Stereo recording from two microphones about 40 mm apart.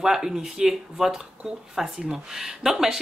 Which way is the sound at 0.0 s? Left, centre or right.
Centre.